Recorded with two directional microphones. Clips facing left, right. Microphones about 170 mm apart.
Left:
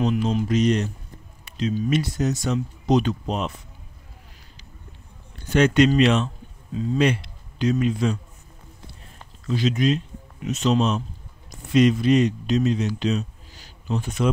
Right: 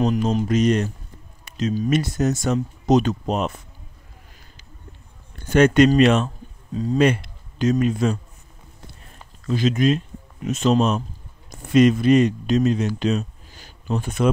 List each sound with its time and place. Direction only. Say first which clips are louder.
0.0 s speech: right 2 dB; 45° right (ahead or behind)
5.4 s speech: right 3 dB; 50° right (ahead or behind)
9.5 s speech: right 2 dB; 50° right (ahead or behind)